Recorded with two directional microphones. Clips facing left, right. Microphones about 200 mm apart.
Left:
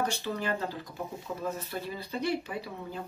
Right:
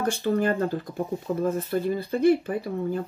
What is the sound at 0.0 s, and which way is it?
Speech, 50° right (ahead or behind).